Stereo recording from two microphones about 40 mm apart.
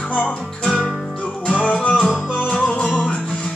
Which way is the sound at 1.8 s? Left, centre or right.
Left.